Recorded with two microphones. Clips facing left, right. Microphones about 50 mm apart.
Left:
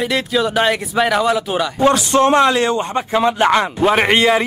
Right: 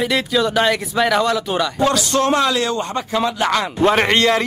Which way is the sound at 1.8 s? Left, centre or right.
Left.